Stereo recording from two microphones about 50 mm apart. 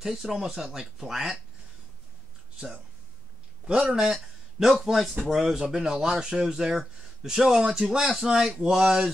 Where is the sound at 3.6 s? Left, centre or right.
Right.